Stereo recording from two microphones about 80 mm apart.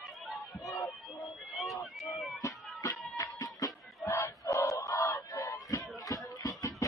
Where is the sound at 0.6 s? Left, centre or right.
Left.